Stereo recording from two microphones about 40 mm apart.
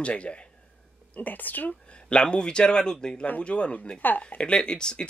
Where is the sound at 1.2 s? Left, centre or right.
Left.